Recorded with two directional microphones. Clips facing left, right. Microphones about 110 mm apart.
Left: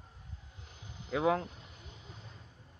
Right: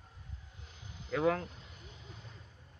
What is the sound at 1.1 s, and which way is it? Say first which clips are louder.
Speech: left 1 dB; 20° left (ahead or behind).